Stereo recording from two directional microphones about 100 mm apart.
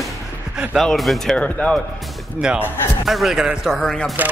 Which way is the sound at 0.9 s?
5° left (ahead or behind).